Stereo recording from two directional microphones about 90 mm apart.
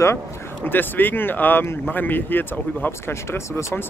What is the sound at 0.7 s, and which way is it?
Speech, 20° left (ahead or behind).